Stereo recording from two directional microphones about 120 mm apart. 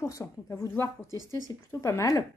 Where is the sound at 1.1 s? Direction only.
30° right (ahead or behind).